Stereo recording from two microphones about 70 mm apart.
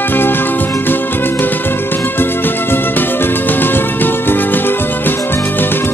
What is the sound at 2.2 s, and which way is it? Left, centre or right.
Music, left.